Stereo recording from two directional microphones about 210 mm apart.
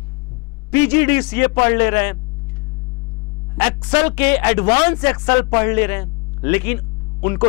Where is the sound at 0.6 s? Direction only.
10° left (ahead or behind).